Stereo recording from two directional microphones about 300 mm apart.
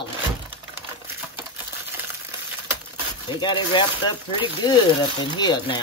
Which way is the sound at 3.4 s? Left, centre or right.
Centre.